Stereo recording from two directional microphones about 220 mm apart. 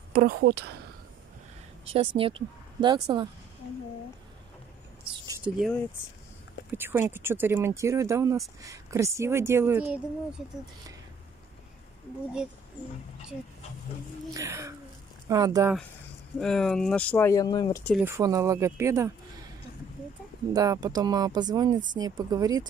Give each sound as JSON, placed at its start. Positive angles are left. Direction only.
{"t": 0.1, "sound": "speech", "side_deg": -40}
{"t": 1.9, "sound": "speech", "side_deg": -25}
{"t": 5.4, "sound": "speech", "side_deg": 0}
{"t": 14.3, "sound": "speech", "side_deg": -15}
{"t": 16.3, "sound": "speech", "side_deg": 5}
{"t": 18.0, "sound": "speech", "side_deg": -15}
{"t": 20.5, "sound": "speech", "side_deg": -15}